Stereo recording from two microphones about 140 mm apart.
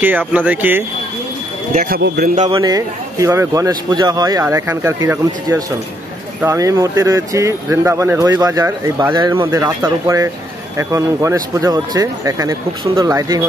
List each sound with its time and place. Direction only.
0.3 s speech: 10° right (ahead or behind)
1.7 s a man's voice: 70° right (ahead or behind)
2.5 s speech: 30° right (ahead or behind)
9.5 s speech: 15° right (ahead or behind)